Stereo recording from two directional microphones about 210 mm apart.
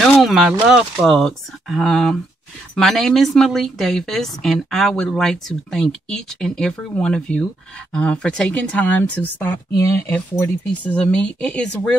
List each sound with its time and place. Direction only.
0.2 s speech: 5° right (ahead or behind)